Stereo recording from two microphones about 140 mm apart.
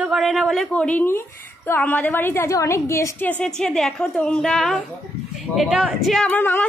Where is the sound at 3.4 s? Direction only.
5° left (ahead or behind).